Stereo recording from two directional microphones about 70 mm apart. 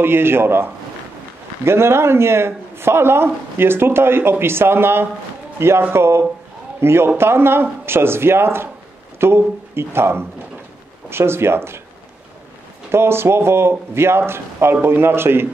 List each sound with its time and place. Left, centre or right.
0.0 s a man's voice: right
12.9 s a man's voice: right